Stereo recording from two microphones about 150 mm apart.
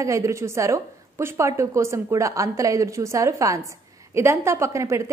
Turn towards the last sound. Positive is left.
turn(degrees=-20)  # may be behind; listen again after turning